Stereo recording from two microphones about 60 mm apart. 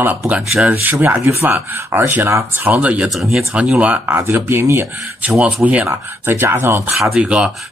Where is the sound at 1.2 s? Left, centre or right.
Right.